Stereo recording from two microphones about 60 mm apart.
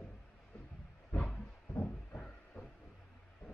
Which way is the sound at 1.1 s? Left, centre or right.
Left.